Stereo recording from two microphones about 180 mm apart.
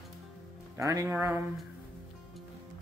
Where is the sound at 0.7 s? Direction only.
15° right (ahead or behind).